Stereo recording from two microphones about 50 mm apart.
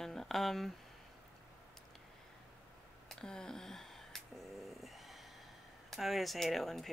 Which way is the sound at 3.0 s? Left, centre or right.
Centre.